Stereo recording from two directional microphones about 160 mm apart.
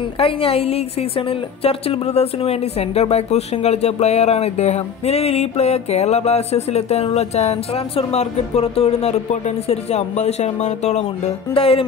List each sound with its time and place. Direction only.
0.2 s a woman's voice: 35° left (ahead or behind)